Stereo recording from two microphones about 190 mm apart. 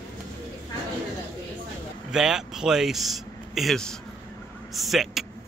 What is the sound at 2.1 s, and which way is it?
A man's voice, 5° right (ahead or behind).